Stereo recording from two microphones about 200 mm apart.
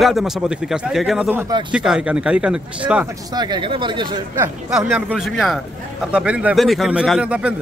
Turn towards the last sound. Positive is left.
turn(degrees=-5)  # may be behind; listen again after turning